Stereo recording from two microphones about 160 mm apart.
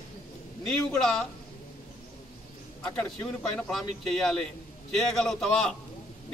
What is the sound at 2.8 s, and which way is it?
A man's voice, 5° left (ahead or behind).